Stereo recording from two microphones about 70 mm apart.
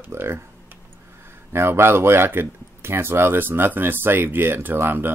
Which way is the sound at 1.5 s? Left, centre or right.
Right.